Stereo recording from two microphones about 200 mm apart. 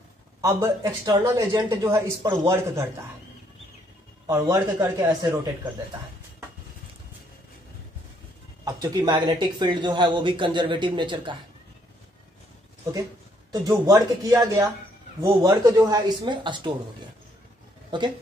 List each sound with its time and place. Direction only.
0.4 s a man's voice: 15° right (ahead or behind)
4.3 s a man's voice: 15° right (ahead or behind)
8.6 s speech: 20° right (ahead or behind)
13.5 s a man's voice: 20° right (ahead or behind)